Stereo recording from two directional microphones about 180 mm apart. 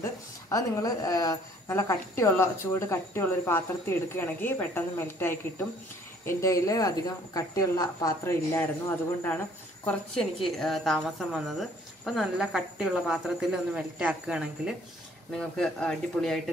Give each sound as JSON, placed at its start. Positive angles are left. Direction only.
{"t": 0.0, "sound": "a woman's voice", "side_deg": 20}